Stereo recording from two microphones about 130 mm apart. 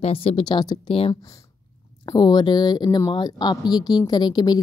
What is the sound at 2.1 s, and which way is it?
Speech, 35° left (ahead or behind).